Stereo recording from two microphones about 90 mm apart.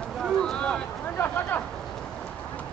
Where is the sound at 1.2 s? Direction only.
20° left (ahead or behind).